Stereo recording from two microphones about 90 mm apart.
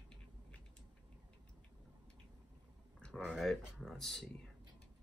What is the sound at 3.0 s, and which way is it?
Speech, 10° left (ahead or behind).